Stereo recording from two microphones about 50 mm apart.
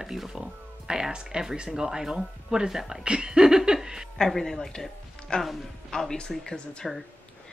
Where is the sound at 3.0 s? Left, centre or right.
Centre.